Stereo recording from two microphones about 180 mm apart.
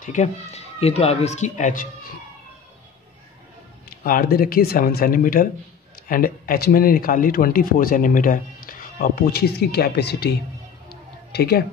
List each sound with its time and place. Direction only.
0.0 s speech: 40° left (ahead or behind)
4.0 s speech: 55° left (ahead or behind)
10.9 s music: 60° left (ahead or behind)